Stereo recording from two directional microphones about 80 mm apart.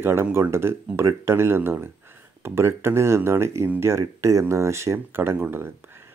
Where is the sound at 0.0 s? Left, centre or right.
Right.